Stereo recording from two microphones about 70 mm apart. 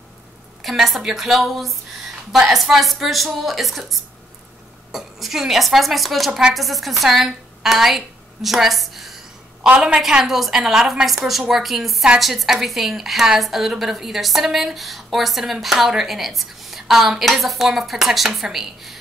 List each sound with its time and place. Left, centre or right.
0.6 s a woman's voice: centre
6.5 s a sound: centre
9.8 s a woman's voice: centre
10.0 s a woman's voice: centre